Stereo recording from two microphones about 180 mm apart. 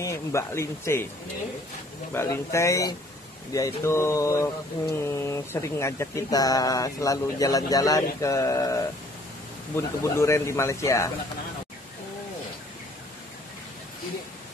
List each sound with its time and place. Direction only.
0.0 s speech: 15° left (ahead or behind)
2.1 s speech: 15° left (ahead or behind)